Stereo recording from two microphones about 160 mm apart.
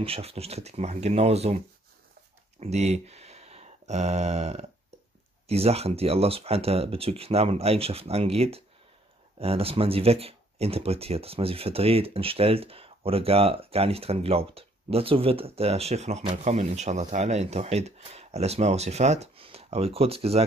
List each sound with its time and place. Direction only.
0.0 s speech: 35° right (ahead or behind)
2.6 s speech: 45° right (ahead or behind)